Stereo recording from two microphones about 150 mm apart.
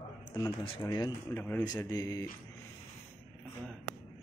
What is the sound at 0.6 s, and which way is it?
Speech, 35° left (ahead or behind).